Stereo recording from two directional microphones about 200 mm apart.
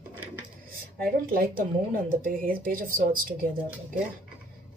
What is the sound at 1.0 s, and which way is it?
Speech, 45° right (ahead or behind).